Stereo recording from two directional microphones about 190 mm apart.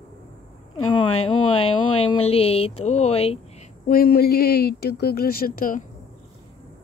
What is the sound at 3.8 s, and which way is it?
Speech, 50° left (ahead or behind).